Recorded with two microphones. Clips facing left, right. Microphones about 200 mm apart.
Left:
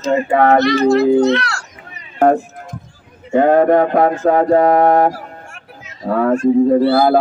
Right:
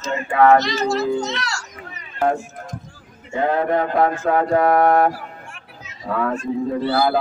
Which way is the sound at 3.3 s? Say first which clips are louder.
Left 8 dB; 50° left (ahead or behind).